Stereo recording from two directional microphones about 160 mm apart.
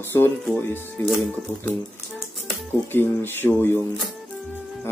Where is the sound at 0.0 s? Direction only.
15° left (ahead or behind).